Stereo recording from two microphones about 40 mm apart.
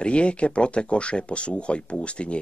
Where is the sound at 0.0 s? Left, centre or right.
Left.